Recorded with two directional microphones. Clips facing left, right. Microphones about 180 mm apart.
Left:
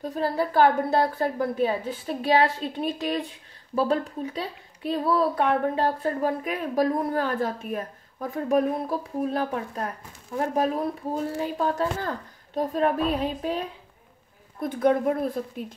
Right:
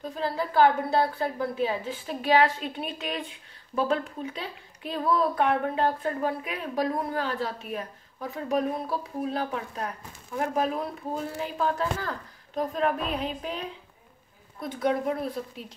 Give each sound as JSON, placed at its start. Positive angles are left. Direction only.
{"t": 0.1, "sound": "a woman's voice", "side_deg": 40}
{"t": 2.0, "sound": "a woman's voice", "side_deg": 35}
{"t": 14.6, "sound": "a woman's voice", "side_deg": 50}